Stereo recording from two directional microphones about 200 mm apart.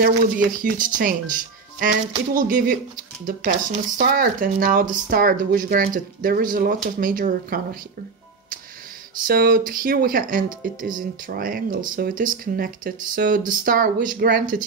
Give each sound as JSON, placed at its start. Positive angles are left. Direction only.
{"t": 0.0, "sound": "speech", "side_deg": -45}
{"t": 9.3, "sound": "speech", "side_deg": -50}